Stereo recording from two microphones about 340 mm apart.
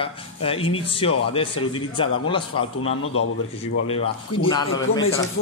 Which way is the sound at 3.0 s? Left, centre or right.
Left.